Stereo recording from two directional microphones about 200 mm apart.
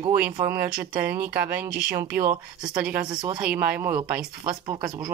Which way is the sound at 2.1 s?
50° right (ahead or behind).